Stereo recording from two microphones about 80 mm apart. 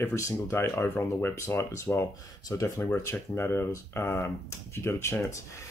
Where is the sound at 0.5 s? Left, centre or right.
Left.